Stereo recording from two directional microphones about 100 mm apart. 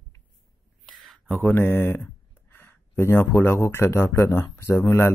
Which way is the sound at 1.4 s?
20° left (ahead or behind).